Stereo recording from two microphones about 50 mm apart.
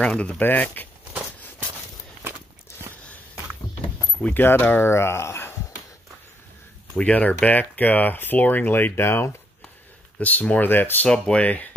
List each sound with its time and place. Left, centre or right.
0.0 s speech: left
0.4 s speech: left
4.3 s speech: left
7.0 s speech: left
10.2 s speech: left
10.6 s speech: left
11.1 s speech: centre
11.4 s speech: left